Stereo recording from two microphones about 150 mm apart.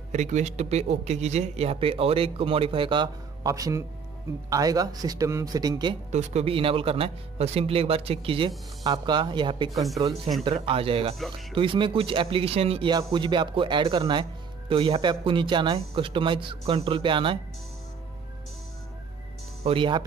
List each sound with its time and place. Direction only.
0.1 s speech: 50° right (ahead or behind); by 5.9 s 30° right (ahead or behind)
6.1 s speech: 40° right (ahead or behind)
19.6 s speech: 35° right (ahead or behind)